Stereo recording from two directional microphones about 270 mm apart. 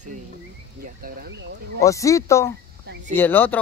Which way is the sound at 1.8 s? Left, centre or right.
Centre.